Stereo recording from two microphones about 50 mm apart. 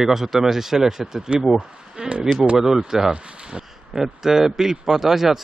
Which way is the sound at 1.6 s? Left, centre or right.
Centre.